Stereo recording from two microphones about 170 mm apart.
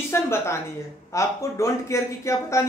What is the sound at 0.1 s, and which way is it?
Speech, 15° left (ahead or behind).